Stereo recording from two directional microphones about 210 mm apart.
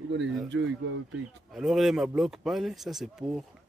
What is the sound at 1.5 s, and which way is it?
Speech, centre (ahead or behind).